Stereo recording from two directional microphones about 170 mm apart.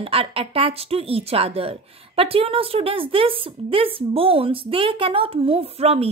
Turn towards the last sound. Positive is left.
turn(degrees=-35)  # may be behind; listen again after turning